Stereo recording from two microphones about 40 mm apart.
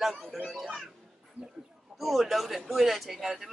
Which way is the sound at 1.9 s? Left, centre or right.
Centre.